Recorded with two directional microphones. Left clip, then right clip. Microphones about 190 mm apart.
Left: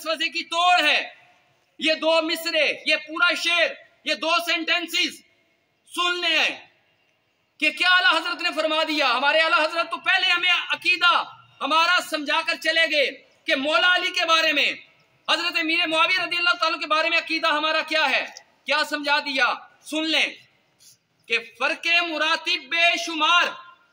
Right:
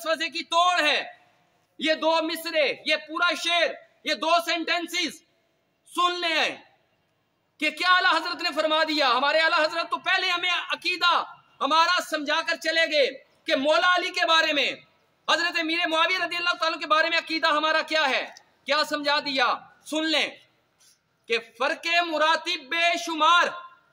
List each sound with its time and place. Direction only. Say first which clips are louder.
0.0 s a man's voice: left 2 dB; 10° right (ahead or behind)
7.5 s a man's voice: left 3 dB; 10° right (ahead or behind)
21.3 s a man's voice: left 2 dB; 10° right (ahead or behind)